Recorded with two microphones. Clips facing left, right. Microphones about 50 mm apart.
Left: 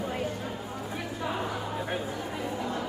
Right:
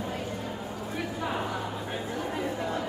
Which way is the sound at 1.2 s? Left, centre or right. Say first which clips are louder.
Even; centre.